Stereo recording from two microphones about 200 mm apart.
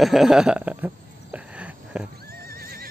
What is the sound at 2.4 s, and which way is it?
Neigh, 45° right (ahead or behind).